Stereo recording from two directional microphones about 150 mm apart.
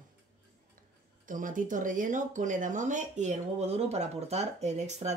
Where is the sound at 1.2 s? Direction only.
60° right (ahead or behind).